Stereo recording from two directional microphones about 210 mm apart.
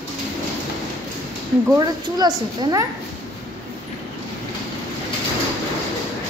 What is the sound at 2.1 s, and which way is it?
Speech, 20° right (ahead or behind).